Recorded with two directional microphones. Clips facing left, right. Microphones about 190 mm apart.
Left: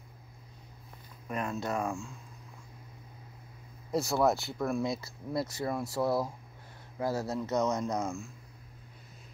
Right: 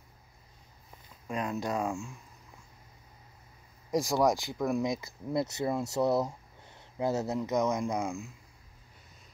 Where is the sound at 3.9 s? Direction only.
15° right (ahead or behind).